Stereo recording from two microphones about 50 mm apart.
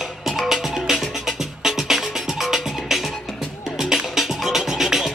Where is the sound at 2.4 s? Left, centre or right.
Centre.